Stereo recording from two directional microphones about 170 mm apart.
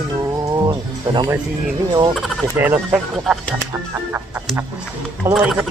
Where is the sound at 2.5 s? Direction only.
10° right (ahead or behind).